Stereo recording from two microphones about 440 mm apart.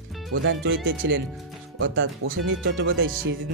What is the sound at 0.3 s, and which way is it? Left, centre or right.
Speech, right.